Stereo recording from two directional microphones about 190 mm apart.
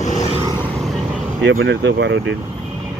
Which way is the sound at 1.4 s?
75° right (ahead or behind).